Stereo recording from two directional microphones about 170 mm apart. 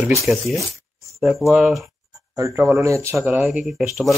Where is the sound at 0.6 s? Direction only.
20° right (ahead or behind).